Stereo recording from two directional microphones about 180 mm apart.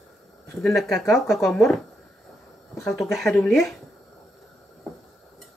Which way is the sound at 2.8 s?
Centre (ahead or behind).